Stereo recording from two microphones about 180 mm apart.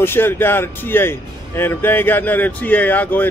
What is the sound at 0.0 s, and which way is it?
Speech, 10° left (ahead or behind).